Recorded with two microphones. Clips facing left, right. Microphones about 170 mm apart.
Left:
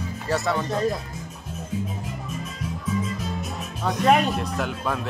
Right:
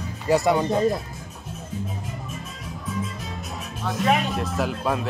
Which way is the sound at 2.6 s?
Centre (ahead or behind).